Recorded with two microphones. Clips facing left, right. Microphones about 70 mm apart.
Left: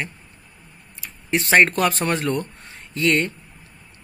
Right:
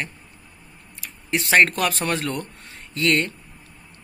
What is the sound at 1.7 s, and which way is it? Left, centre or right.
Speech, left.